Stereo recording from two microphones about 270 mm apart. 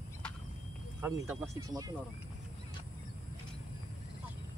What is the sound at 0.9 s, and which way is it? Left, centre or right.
Speech, centre.